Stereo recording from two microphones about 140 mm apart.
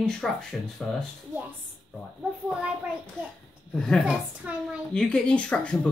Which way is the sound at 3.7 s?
5° left (ahead or behind).